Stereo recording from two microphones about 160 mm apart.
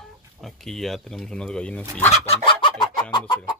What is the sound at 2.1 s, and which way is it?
Chicken, 35° left (ahead or behind).